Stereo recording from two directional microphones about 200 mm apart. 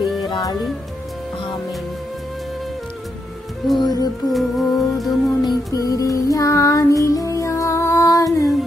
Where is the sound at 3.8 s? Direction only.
20° left (ahead or behind).